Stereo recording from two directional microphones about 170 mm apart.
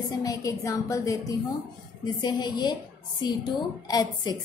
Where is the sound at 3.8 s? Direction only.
25° left (ahead or behind).